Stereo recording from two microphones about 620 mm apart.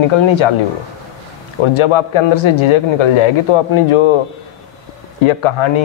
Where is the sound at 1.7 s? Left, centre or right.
Left.